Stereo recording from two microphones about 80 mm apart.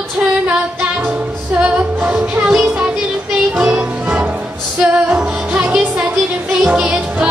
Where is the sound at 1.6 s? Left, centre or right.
Centre.